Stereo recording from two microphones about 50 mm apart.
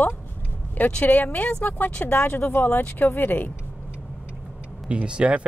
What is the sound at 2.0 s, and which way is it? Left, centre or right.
Speech, left.